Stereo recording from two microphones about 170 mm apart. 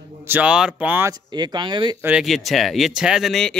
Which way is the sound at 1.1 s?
25° right (ahead or behind).